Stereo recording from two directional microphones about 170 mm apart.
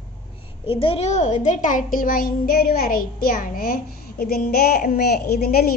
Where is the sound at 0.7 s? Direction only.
30° left (ahead or behind).